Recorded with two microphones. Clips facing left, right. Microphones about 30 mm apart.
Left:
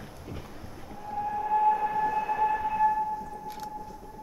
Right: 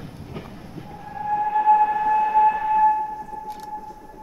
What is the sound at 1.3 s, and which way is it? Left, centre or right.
Train, right.